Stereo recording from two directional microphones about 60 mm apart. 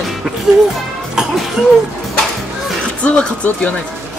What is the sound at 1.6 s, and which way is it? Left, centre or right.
Speech, centre.